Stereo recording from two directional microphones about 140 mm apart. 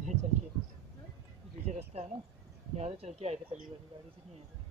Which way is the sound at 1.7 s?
55° right (ahead or behind).